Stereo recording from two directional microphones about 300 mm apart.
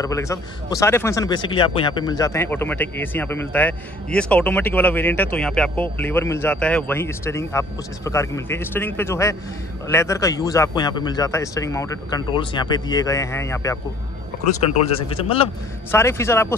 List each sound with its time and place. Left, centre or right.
0.0 s a man's voice: centre
14.4 s a man's voice: left